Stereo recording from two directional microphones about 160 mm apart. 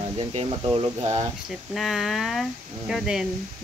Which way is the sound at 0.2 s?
35° right (ahead or behind).